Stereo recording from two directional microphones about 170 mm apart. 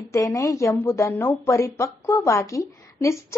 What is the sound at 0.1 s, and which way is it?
A woman's voice, 20° left (ahead or behind).